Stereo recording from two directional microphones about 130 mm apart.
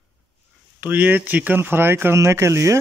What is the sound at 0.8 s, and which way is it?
Speech, 10° right (ahead or behind).